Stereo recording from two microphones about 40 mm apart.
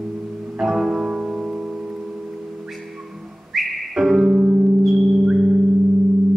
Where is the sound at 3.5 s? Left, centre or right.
Centre.